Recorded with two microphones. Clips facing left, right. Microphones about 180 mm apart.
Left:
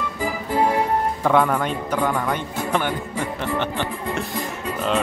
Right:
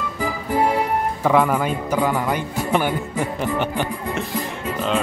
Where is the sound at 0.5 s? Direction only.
15° right (ahead or behind).